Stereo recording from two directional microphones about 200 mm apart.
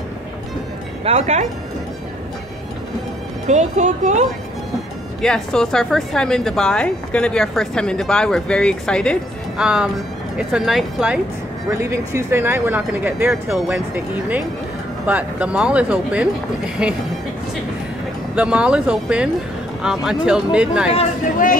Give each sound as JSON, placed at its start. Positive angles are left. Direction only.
{"t": 1.0, "sound": "speech", "side_deg": -35}
{"t": 3.4, "sound": "speech", "side_deg": -35}
{"t": 5.2, "sound": "speech", "side_deg": 5}
{"t": 11.7, "sound": "speech", "side_deg": -15}
{"t": 18.3, "sound": "speech", "side_deg": -5}